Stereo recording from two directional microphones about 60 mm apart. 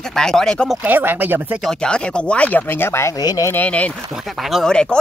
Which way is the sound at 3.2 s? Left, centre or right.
Left.